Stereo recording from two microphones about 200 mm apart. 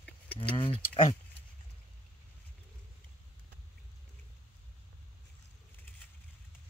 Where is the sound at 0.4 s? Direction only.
25° left (ahead or behind).